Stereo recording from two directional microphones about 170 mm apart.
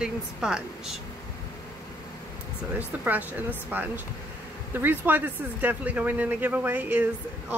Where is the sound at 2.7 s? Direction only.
10° right (ahead or behind).